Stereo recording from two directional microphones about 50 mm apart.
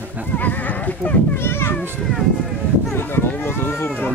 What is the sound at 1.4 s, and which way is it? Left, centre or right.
Speech, left.